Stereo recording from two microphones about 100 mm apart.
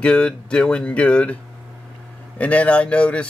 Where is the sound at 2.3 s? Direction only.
15° left (ahead or behind).